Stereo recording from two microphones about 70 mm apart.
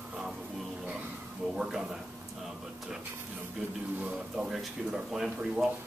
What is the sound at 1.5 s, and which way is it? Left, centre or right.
Speech, centre.